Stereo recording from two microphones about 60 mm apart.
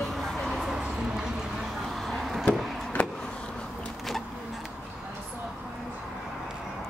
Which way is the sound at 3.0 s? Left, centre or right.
Left.